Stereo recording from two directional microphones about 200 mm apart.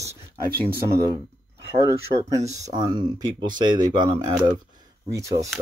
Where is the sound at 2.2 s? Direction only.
15° right (ahead or behind).